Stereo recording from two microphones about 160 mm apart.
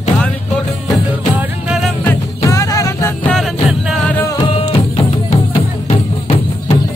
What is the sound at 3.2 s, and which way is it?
Music, centre (ahead or behind).